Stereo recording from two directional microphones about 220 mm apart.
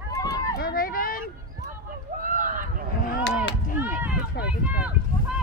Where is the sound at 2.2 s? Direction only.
35° right (ahead or behind).